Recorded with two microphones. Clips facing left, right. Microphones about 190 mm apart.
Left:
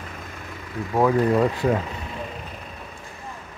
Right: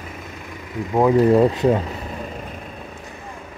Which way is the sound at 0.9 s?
20° right (ahead or behind).